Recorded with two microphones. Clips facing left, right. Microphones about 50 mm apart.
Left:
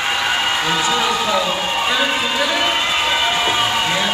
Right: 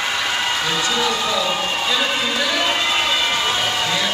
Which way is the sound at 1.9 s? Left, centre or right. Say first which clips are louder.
Left 2 dB; left.